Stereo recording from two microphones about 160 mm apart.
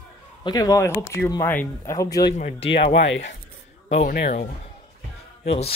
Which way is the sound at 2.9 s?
90° left.